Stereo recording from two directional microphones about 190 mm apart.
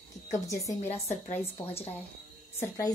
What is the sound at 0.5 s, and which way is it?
Speech, 15° left (ahead or behind).